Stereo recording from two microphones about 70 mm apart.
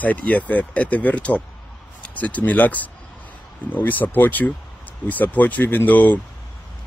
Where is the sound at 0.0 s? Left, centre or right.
Left.